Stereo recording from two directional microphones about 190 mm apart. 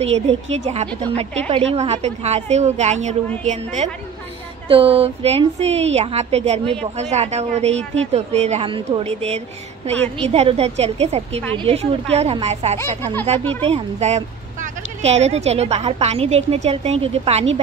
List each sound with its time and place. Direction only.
0.0 s a woman's voice: 35° right (ahead or behind)